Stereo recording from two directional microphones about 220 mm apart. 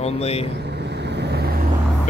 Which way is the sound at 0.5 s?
50° right (ahead or behind).